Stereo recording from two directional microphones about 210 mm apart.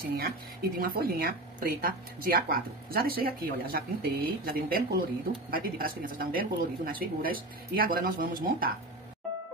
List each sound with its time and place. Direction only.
0.1 s speech: 45° right (ahead or behind)